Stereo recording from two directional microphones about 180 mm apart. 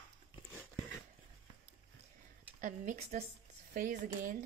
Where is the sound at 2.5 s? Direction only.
40° right (ahead or behind).